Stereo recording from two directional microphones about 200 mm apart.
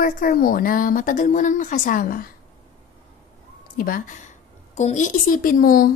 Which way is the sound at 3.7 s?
45° left (ahead or behind).